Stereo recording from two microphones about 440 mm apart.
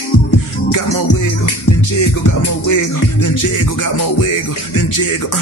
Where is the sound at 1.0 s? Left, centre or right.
Left.